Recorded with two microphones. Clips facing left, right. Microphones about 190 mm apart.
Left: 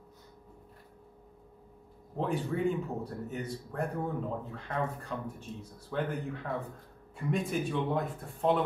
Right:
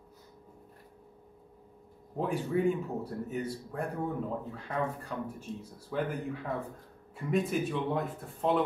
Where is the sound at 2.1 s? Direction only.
10° right (ahead or behind).